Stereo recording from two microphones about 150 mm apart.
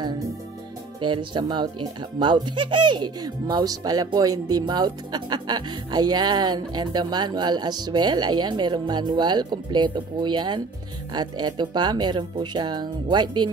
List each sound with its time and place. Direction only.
1.0 s speech: 30° right (ahead or behind)